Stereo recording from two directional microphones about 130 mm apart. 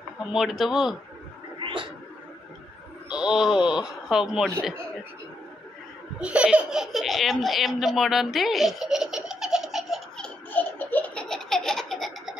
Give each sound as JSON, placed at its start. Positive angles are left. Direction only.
{"t": 0.2, "sound": "speech", "side_deg": 0}
{"t": 1.6, "sound": "a sound", "side_deg": -40}
{"t": 3.1, "sound": "speech", "side_deg": -5}
{"t": 6.1, "sound": "laughter", "side_deg": -10}